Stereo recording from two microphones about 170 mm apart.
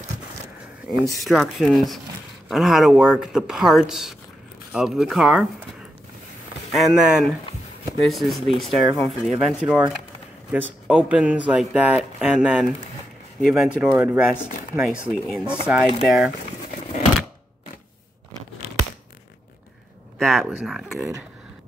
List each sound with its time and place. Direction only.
1.1 s speech: centre (ahead or behind)
6.7 s speech: centre (ahead or behind)
18.6 s a sound: 35° right (ahead or behind)
20.2 s speech: centre (ahead or behind)